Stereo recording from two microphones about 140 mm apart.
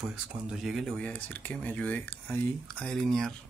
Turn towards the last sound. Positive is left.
turn(degrees=5)  # may be behind; listen again after turning